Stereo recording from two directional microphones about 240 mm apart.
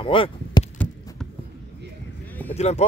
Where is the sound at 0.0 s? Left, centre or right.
Left.